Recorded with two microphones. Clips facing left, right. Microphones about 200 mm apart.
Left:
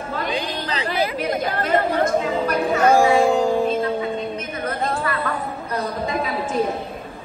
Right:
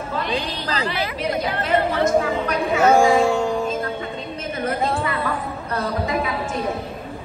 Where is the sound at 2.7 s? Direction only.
5° right (ahead or behind).